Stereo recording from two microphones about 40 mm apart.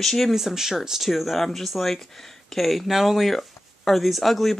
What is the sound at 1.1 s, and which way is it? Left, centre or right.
Speech, centre.